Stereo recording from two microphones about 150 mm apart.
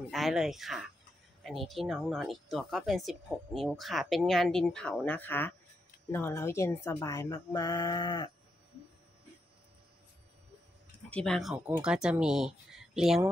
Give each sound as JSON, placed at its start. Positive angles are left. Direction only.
{"t": 0.1, "sound": "speech", "side_deg": 0}
{"t": 11.1, "sound": "speech", "side_deg": 5}
{"t": 11.5, "sound": "speech", "side_deg": -10}